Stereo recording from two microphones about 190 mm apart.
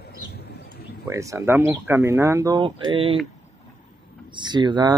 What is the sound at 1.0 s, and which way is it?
Speech, 15° right (ahead or behind).